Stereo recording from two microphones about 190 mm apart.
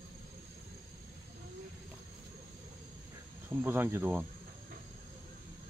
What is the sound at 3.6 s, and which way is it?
Speech, 10° right (ahead or behind).